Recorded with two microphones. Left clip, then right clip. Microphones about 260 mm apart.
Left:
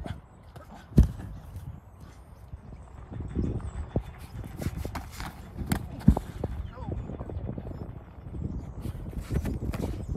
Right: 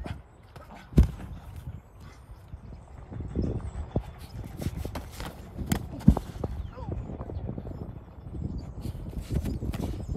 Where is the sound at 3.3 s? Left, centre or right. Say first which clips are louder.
Right 1 dB; centre.